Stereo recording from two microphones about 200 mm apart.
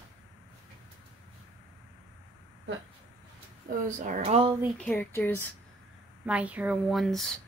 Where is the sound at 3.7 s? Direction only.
40° right (ahead or behind).